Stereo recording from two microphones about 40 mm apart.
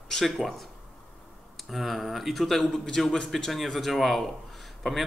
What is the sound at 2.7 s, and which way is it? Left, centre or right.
Speech, centre.